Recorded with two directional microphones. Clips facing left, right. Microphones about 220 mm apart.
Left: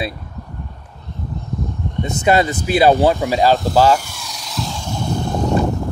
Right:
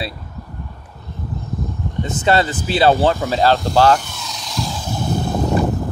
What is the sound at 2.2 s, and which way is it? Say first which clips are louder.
Speech: left 2 dB; 15° left (ahead or behind).